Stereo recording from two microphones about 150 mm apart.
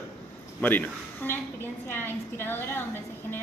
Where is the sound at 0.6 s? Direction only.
10° left (ahead or behind).